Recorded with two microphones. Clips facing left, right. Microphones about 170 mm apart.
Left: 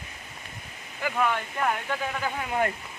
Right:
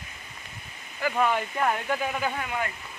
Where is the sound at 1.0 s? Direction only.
20° left (ahead or behind).